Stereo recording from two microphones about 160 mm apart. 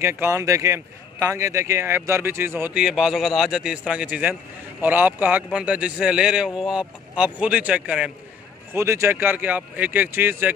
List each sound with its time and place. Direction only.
0.0 s a man's voice: 15° right (ahead or behind)